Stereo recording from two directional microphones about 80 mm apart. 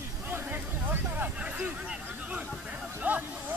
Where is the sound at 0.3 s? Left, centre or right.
Right.